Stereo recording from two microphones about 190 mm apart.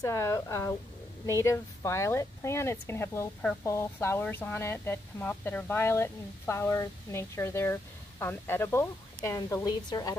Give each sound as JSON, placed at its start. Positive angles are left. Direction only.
{"t": 0.0, "sound": "speech", "side_deg": 15}